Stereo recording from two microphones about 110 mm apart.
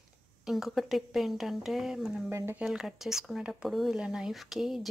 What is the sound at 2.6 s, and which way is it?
Speech, 5° right (ahead or behind).